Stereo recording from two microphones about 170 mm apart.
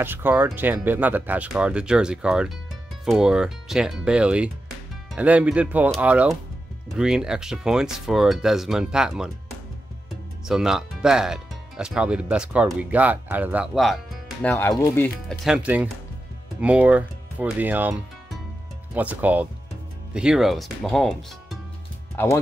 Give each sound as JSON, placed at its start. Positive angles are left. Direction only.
{"t": 0.0, "sound": "speech", "side_deg": -10}
{"t": 10.4, "sound": "speech", "side_deg": -5}
{"t": 14.4, "sound": "speech", "side_deg": 10}
{"t": 15.2, "sound": "speech", "side_deg": -5}
{"t": 18.9, "sound": "speech", "side_deg": -10}
{"t": 22.1, "sound": "speech", "side_deg": 15}